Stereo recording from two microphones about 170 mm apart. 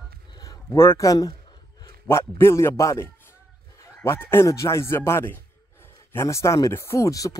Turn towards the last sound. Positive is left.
turn(degrees=20)  # may be behind; listen again after turning